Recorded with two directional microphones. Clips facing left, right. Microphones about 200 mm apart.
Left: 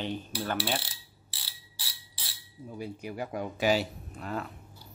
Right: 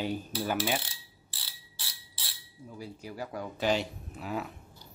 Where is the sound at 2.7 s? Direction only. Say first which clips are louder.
Left 4 dB; 20° left (ahead or behind).